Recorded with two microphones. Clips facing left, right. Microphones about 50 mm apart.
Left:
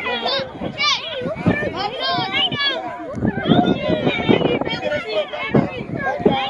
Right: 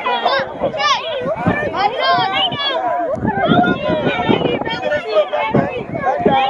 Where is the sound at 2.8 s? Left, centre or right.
Right.